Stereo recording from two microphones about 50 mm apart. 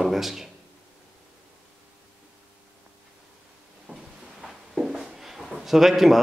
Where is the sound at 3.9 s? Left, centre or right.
Right.